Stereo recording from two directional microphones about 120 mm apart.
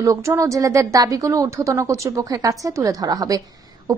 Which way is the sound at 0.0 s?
30° right (ahead or behind).